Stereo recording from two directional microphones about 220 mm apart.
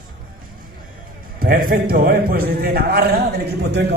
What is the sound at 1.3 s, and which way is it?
A man's voice, 40° right (ahead or behind).